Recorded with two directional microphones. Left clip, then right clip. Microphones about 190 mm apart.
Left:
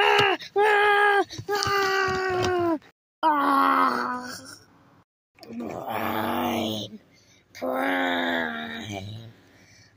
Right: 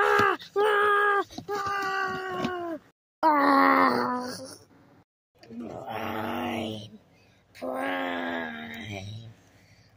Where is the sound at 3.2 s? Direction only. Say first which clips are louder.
Even; 40° right (ahead or behind).